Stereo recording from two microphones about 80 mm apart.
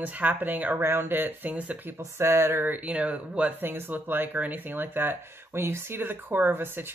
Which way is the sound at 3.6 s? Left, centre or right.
Right.